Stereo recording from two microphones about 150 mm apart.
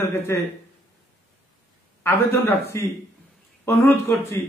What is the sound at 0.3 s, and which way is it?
Speech, 20° left (ahead or behind).